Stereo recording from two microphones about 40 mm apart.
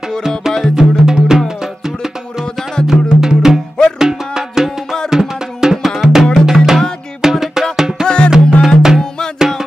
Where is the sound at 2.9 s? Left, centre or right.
Centre.